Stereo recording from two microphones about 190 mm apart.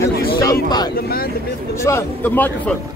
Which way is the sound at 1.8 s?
15° left (ahead or behind).